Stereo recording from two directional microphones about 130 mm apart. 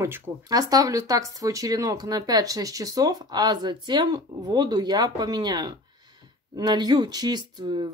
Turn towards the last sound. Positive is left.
turn(degrees=-35)  # may be behind; listen again after turning